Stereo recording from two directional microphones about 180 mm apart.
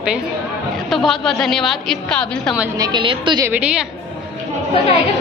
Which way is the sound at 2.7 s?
25° right (ahead or behind).